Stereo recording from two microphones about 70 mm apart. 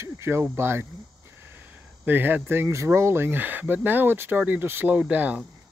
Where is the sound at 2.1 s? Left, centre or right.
Right.